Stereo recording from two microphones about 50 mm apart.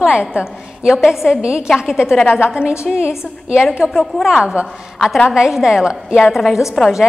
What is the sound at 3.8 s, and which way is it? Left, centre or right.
A woman's voice, centre.